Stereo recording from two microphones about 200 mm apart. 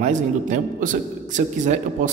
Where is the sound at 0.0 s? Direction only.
40° right (ahead or behind).